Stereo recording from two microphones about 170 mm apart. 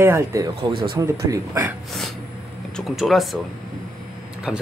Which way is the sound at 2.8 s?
Centre (ahead or behind).